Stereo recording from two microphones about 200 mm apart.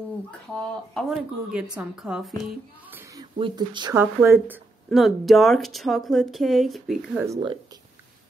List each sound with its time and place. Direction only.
0.3 s speech: 5° left (ahead or behind)
2.4 s a sound: 10° right (ahead or behind)
3.3 s speech: 25° right (ahead or behind)
4.0 s speech: 10° right (ahead or behind)